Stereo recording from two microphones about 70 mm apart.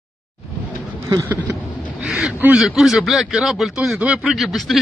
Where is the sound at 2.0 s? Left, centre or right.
Centre.